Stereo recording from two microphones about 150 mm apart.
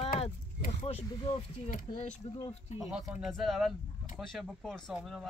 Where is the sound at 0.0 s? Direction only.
40° left (ahead or behind).